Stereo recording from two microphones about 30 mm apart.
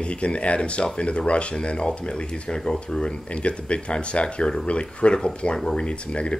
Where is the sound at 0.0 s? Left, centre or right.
Left.